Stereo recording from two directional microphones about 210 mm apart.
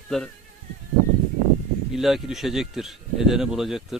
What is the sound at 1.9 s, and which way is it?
Speech, centre (ahead or behind).